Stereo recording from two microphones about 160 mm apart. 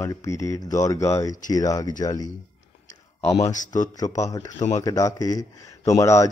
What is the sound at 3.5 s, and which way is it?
Speech, 50° left (ahead or behind).